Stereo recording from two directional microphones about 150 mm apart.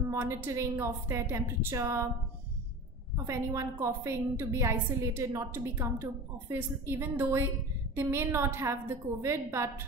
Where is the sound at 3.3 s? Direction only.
20° right (ahead or behind).